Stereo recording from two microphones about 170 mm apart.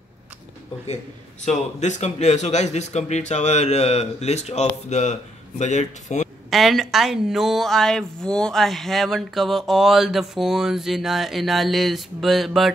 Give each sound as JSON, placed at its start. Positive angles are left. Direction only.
{"t": 1.4, "sound": "a man's voice", "side_deg": 45}
{"t": 6.5, "sound": "speech", "side_deg": 0}